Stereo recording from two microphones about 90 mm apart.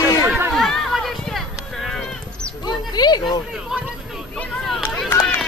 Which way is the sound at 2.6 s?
50° left (ahead or behind).